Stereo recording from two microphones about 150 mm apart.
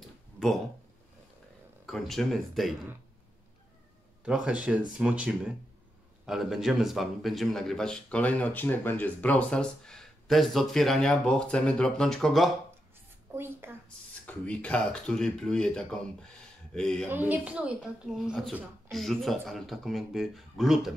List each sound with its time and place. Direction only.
1.9 s a man's voice: centre (ahead or behind)
4.2 s a man's voice: 5° right (ahead or behind)
13.3 s speech: 15° right (ahead or behind)
13.8 s a man's voice: 10° left (ahead or behind)
17.1 s a man's voice: 10° right (ahead or behind)